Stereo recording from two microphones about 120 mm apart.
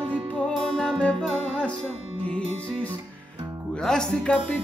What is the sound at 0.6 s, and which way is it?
Music, 5° left (ahead or behind).